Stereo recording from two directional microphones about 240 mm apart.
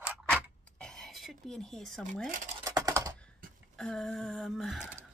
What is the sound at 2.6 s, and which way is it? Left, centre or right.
Computer keyboard, centre.